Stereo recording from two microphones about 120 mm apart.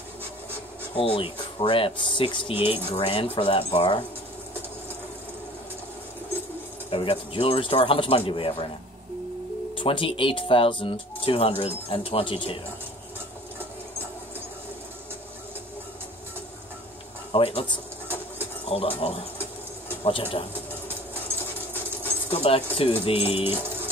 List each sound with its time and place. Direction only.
0.9 s speech: 50° left (ahead or behind)
6.9 s speech: 50° left (ahead or behind)
9.8 s speech: 45° left (ahead or behind)
17.3 s speech: 50° left (ahead or behind)
18.0 s train: 15° right (ahead or behind)
18.7 s speech: 55° left (ahead or behind)
21.1 s dog: 15° right (ahead or behind)
22.3 s speech: 55° left (ahead or behind)